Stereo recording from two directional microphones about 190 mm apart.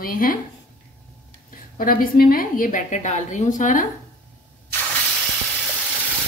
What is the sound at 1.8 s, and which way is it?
A woman's voice, 50° left (ahead or behind).